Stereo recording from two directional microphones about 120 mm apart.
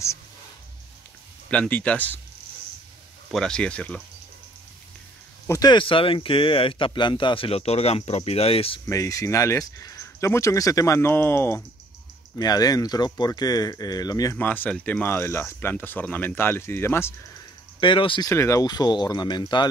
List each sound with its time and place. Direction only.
1.5 s speech: 10° left (ahead or behind)
3.3 s speech: 5° left (ahead or behind)
5.5 s speech: 35° left (ahead or behind); by 8.8 s 55° left (ahead or behind)
8.8 s speech: 25° left (ahead or behind)
12.4 s speech: 30° left (ahead or behind)
14.3 s speech: 15° left (ahead or behind)
17.7 s speech: 45° left (ahead or behind)
18.3 s speech: 25° left (ahead or behind)